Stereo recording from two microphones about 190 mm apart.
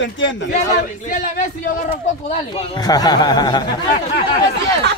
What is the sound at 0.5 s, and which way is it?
Speech, 40° left (ahead or behind).